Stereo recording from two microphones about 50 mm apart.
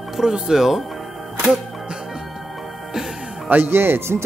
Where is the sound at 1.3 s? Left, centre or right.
Centre.